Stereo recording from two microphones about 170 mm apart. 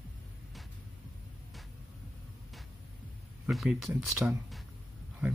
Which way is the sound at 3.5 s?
Centre (ahead or behind).